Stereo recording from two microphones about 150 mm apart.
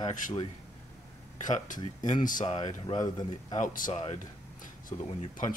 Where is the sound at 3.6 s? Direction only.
65° left (ahead or behind).